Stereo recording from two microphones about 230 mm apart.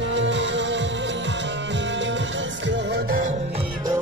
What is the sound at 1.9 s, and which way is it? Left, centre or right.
Music, right.